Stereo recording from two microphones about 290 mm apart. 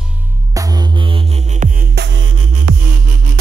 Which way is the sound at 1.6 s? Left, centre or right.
Right.